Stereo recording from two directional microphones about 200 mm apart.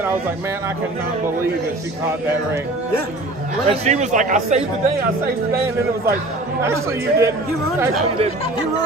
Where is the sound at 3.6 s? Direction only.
35° right (ahead or behind).